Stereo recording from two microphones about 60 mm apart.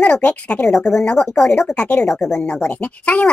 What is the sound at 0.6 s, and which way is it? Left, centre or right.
Speech, centre.